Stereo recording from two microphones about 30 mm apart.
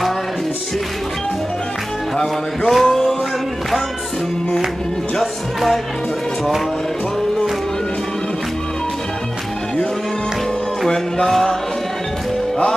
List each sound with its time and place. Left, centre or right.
2.7 s music: centre
5.2 s speech: centre
10.9 s music: left